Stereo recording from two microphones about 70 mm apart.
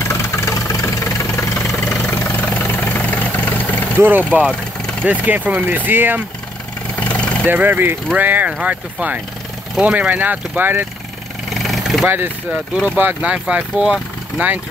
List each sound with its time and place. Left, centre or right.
0.0 s vehicle: left
2.1 s vehicle: left
3.9 s speech: right
4.5 s vehicle: centre
5.0 s speech: right
7.0 s vehicle: centre
7.4 s speech: right
11.5 s vehicle: centre
12.8 s speech: right